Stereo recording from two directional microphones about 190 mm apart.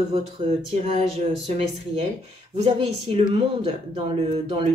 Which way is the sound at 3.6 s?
30° right (ahead or behind).